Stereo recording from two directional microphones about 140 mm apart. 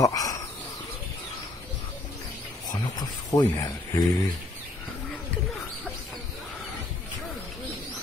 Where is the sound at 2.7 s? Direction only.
30° left (ahead or behind).